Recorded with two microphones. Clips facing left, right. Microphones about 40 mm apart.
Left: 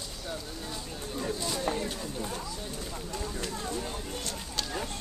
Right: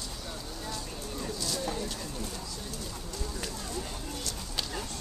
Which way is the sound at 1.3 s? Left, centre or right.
Left.